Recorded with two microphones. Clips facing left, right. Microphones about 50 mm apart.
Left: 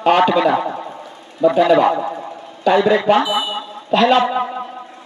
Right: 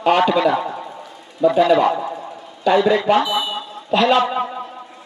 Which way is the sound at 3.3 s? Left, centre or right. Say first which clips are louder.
Left 2 dB; centre.